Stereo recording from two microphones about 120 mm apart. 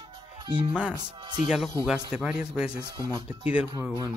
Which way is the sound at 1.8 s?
5° right (ahead or behind).